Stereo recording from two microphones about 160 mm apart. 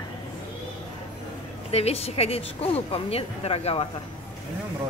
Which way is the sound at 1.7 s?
40° left (ahead or behind).